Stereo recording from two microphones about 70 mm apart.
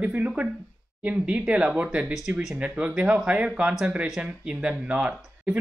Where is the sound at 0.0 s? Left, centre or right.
Right.